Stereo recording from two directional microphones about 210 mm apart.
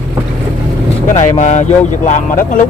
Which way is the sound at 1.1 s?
35° left (ahead or behind).